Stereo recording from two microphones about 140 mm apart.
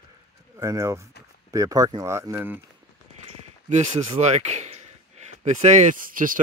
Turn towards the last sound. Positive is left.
turn(degrees=-80)